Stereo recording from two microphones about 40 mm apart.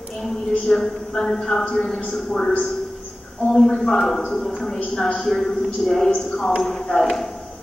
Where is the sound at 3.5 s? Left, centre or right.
Centre.